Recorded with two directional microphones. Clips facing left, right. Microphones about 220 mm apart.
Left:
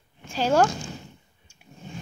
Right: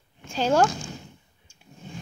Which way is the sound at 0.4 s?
10° left (ahead or behind).